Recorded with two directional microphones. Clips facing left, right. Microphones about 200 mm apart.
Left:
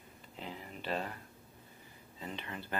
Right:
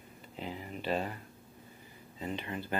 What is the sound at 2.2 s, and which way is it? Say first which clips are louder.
Speech: right 6 dB; 15° right (ahead or behind).